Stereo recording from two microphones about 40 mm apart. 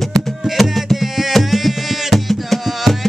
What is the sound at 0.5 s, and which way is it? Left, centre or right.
Music, centre.